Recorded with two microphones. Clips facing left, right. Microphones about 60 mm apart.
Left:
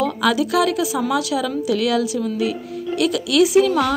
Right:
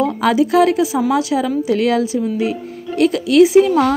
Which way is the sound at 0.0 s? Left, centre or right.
Right.